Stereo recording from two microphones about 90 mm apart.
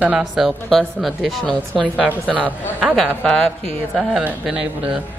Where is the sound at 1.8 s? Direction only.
10° right (ahead or behind).